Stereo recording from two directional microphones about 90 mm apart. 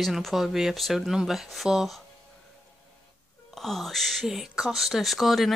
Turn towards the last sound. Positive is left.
turn(degrees=0)  # may be behind; listen again after turning